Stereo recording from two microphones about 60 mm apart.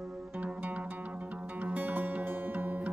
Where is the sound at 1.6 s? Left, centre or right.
Right.